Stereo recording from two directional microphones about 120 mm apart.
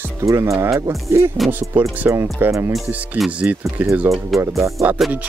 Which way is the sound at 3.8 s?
20° right (ahead or behind).